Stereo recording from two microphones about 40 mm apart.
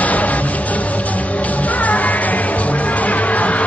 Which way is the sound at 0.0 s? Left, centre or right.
Left.